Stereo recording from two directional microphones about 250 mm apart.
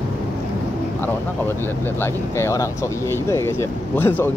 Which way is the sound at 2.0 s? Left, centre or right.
Centre.